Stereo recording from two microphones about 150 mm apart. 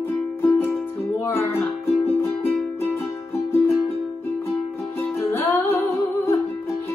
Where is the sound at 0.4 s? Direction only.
15° left (ahead or behind).